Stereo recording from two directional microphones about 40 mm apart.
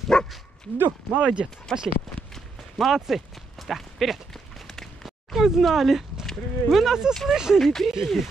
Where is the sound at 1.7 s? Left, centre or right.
Centre.